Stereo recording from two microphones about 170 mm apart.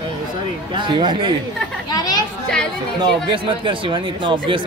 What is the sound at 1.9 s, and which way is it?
Chatter, 25° left (ahead or behind).